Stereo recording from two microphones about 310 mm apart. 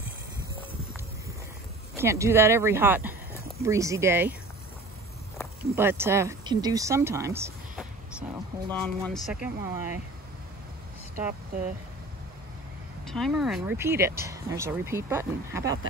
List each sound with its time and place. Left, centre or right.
2.0 s speech: centre
5.8 s speech: centre
11.1 s speech: right
13.0 s speech: centre